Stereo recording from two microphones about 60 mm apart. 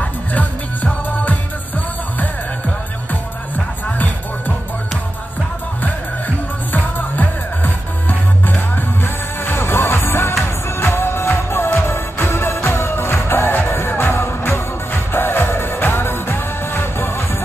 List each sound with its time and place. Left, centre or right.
3.5 s music: left
6.7 s music: left
9.0 s music: left